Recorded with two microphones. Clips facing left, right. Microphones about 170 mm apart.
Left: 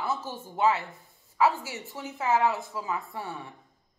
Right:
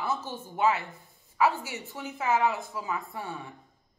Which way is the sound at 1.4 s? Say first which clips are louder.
Left 1 dB; 20° right (ahead or behind).